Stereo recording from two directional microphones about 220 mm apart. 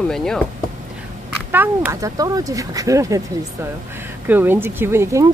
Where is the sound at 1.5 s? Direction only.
10° right (ahead or behind).